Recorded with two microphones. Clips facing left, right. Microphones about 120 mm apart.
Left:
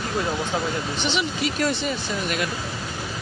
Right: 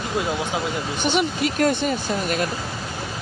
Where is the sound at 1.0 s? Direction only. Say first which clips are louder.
Right 5 dB; 50° right (ahead or behind).